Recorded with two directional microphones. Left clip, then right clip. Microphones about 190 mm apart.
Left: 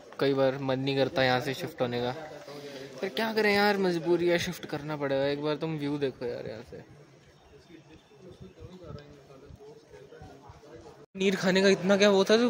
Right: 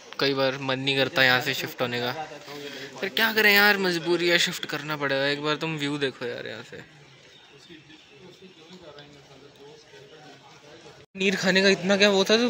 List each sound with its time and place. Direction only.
0.1 s speech: 10° left (ahead or behind)
11.1 s speech: 5° left (ahead or behind)